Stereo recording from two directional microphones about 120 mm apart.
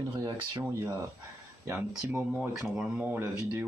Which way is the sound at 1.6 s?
15° right (ahead or behind).